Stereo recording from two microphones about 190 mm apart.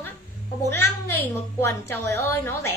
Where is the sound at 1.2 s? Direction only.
60° right (ahead or behind).